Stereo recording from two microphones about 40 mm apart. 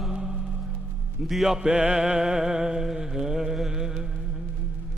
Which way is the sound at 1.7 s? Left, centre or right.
Right.